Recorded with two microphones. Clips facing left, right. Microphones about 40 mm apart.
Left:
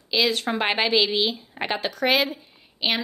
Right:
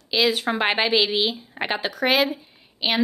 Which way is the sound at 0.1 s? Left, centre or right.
Centre.